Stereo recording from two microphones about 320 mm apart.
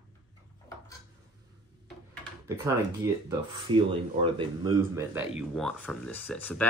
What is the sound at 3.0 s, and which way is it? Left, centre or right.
Speech, centre.